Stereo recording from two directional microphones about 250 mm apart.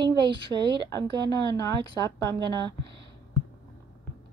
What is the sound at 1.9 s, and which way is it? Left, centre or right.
Speech, centre.